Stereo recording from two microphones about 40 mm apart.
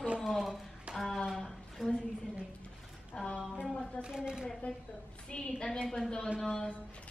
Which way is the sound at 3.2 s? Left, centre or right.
Left.